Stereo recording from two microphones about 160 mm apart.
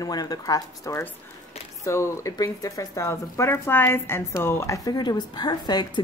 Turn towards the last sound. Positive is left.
turn(degrees=25)  # may be behind; listen again after turning